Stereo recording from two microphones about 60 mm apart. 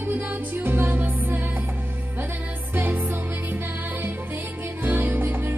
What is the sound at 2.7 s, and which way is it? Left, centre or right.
Music, right.